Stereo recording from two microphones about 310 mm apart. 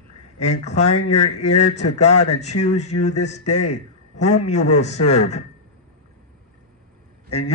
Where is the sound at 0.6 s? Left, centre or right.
Left.